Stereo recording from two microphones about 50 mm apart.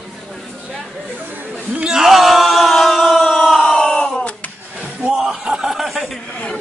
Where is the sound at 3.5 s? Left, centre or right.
Centre.